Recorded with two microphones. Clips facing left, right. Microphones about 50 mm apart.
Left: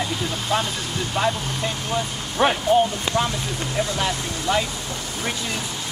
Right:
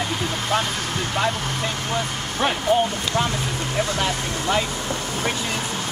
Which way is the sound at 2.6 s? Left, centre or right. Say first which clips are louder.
Left 1 dB; right.